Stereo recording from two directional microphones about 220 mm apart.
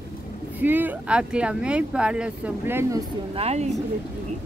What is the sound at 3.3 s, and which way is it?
Speech, 30° right (ahead or behind).